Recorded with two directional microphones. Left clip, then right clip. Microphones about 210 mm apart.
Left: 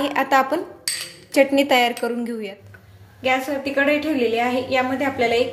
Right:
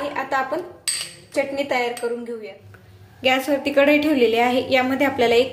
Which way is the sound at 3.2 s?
25° right (ahead or behind).